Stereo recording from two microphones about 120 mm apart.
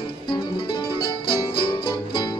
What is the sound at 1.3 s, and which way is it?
Music, 45° left (ahead or behind).